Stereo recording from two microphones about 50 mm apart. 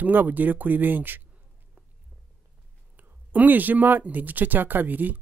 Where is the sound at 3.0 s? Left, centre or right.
Right.